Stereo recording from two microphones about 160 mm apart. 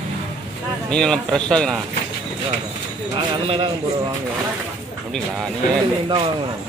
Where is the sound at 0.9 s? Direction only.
5° left (ahead or behind).